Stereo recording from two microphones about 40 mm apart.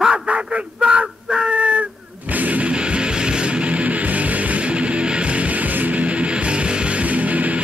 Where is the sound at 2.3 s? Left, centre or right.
Right.